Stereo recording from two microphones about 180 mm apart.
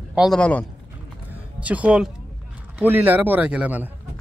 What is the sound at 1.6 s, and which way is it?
Speech, 5° right (ahead or behind).